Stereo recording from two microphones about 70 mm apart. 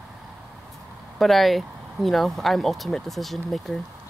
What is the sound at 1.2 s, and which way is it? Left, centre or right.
Speech, centre.